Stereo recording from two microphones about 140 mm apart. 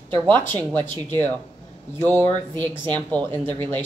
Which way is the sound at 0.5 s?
15° left (ahead or behind).